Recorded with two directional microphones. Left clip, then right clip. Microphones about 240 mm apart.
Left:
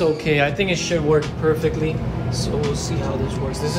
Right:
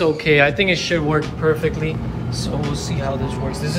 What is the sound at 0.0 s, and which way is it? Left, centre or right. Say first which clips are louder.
Speech: right 3 dB; centre.